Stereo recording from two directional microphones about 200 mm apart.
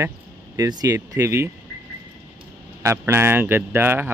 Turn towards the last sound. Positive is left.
turn(degrees=-10)  # may be behind; listen again after turning